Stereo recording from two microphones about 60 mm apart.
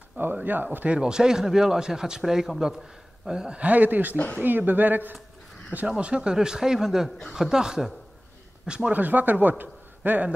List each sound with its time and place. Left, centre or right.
0.2 s speech: right
0.8 s speech: centre; by 5.1 s right
5.9 s speech: centre
8.9 s a man's voice: right